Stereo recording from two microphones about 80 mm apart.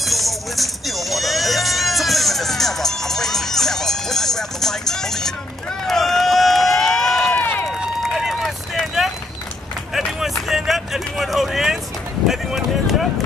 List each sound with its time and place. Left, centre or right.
0.0 s music: centre
5.9 s run: centre
7.3 s run: left
8.0 s run: centre
9.9 s a sound: centre